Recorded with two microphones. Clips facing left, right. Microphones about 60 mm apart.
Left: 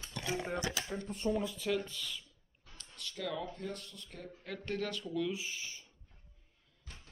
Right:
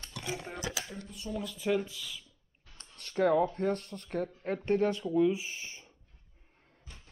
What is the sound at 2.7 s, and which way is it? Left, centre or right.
Speech, right.